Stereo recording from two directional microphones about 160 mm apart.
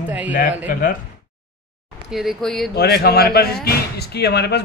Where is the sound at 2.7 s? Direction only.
80° left.